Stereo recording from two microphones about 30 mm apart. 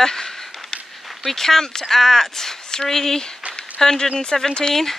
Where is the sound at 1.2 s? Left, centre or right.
Centre.